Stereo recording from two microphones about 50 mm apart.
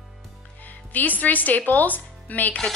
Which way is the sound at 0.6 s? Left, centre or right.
Left.